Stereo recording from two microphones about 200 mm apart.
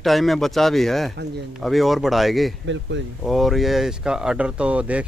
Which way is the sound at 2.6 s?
65° right (ahead or behind).